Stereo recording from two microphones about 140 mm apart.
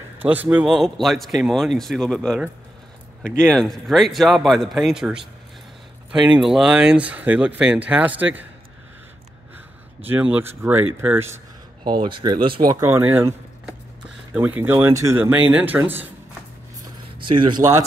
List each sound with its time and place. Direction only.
0.2 s speech: 10° right (ahead or behind)
10.0 s speech: 10° right (ahead or behind)
12.0 s speech: 35° right (ahead or behind)
12.6 s speech: 15° right (ahead or behind)
17.2 s speech: 35° right (ahead or behind)